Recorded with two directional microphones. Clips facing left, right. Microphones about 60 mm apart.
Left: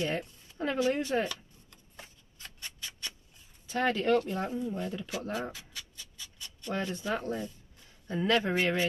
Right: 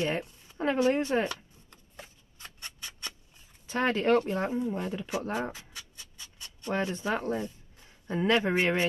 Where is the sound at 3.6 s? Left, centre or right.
Right.